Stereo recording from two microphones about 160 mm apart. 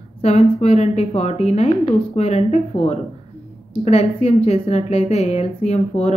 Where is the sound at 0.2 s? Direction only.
40° left (ahead or behind).